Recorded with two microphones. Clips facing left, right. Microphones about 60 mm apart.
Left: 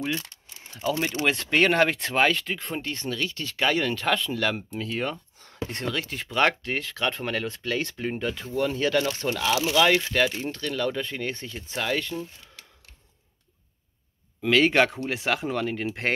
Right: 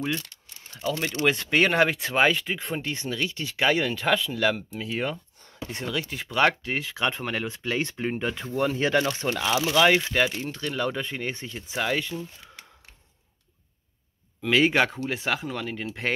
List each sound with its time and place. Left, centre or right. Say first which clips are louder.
0.7 s speech: left 2 dB; centre
1.2 s speech: right 1 dB; centre
14.5 s speech: left 1 dB; centre